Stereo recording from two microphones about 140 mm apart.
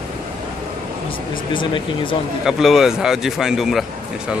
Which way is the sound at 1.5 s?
35° left (ahead or behind).